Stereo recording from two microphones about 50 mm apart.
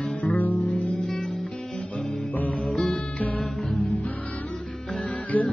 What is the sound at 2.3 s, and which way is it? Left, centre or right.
Music, left.